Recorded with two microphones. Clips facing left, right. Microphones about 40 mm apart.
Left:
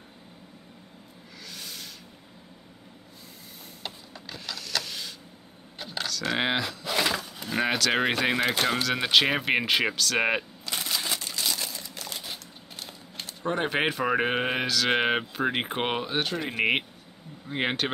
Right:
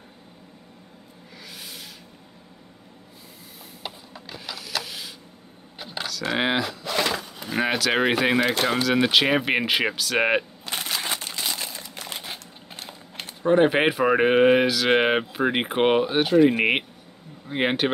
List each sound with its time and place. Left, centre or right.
1.5 s a sound: centre
3.8 s printer: centre
5.8 s speech: centre
10.6 s shuffling cards: right
11.3 s a sound: right
13.4 s speech: centre